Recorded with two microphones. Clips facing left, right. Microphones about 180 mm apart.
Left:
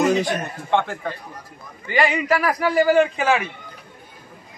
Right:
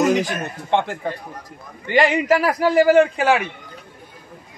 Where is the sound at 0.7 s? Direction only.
20° right (ahead or behind).